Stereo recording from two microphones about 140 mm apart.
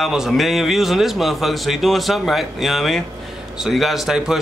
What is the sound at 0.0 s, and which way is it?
A man's voice, centre (ahead or behind).